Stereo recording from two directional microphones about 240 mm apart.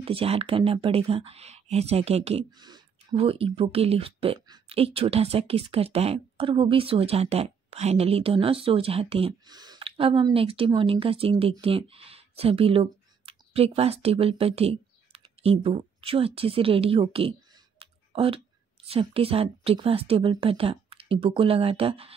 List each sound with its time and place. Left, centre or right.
0.0 s a woman's voice: right